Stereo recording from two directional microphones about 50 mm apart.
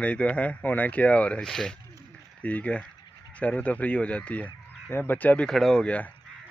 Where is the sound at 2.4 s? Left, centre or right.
Left.